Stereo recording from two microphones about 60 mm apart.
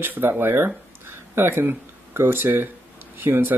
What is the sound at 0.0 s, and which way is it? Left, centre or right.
Speech, right.